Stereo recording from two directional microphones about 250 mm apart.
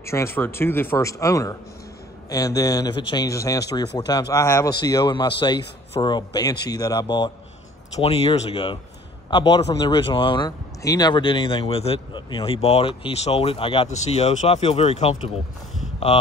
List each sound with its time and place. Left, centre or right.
0.0 s speech: centre